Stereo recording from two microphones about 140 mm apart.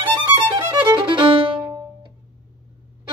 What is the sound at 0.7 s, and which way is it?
Violin, 35° right (ahead or behind).